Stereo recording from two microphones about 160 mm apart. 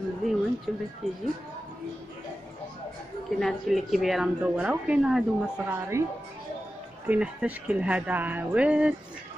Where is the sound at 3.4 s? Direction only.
Centre (ahead or behind).